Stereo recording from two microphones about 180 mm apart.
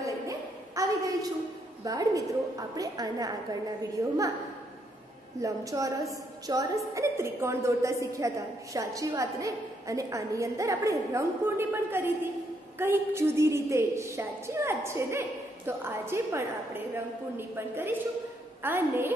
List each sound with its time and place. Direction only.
0.0 s a sound: 15° right (ahead or behind)
1.9 s a woman's voice: 20° right (ahead or behind)
5.4 s a woman's voice: 20° right (ahead or behind)